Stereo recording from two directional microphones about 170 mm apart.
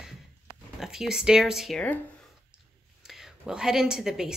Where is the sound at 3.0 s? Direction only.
5° right (ahead or behind).